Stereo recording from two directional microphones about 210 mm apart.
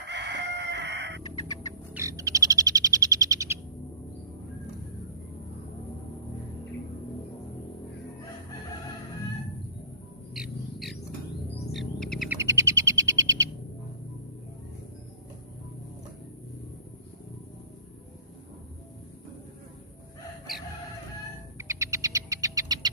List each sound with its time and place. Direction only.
0.1 s chicken: 55° right (ahead or behind)
2.0 s bird: 15° right (ahead or behind)
10.3 s music: centre (ahead or behind)
11.7 s bird: centre (ahead or behind)
12.4 s bird: 15° right (ahead or behind)
21.5 s a sound: 15° right (ahead or behind)